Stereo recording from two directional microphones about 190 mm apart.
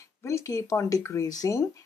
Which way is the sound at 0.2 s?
15° left (ahead or behind).